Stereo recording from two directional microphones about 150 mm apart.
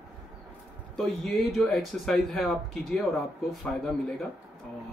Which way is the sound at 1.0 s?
Centre (ahead or behind).